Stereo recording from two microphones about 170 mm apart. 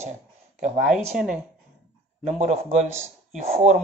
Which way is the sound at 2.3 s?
40° right (ahead or behind).